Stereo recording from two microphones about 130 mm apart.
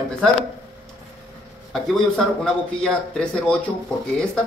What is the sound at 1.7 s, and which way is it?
Speech, 5° left (ahead or behind).